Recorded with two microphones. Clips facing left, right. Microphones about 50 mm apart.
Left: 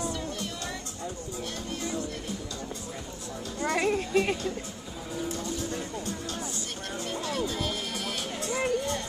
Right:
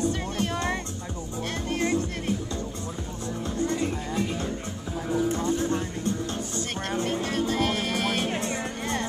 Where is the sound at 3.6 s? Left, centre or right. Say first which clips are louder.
Left 4 dB; left.